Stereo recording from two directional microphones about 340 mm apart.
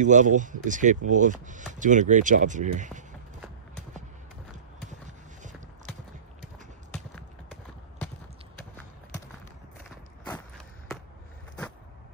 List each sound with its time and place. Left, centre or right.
0.0 s speech: right
6.9 s clip-clop: centre